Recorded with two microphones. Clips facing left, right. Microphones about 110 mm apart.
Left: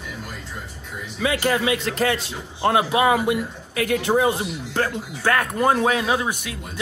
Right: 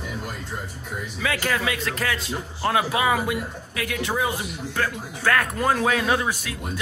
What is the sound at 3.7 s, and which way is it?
Speech, 35° left (ahead or behind).